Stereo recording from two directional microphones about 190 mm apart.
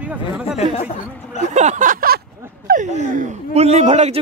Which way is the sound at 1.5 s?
40° right (ahead or behind).